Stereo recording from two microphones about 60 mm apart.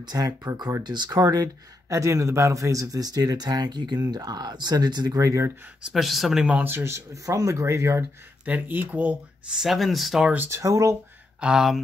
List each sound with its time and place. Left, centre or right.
0.2 s speech: right
5.9 s speech: centre
6.6 s speech: right
8.5 s speech: right
9.5 s speech: centre
10.5 s speech: right
11.4 s speech: centre